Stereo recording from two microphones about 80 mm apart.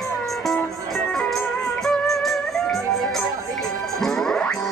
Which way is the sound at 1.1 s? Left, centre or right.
Centre.